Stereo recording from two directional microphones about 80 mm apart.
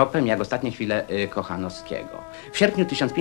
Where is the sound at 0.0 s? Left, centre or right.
Right.